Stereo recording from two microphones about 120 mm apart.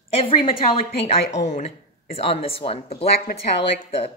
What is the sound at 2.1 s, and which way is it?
Speech, 55° left (ahead or behind).